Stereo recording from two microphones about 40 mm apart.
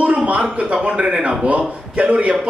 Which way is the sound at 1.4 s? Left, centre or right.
Right.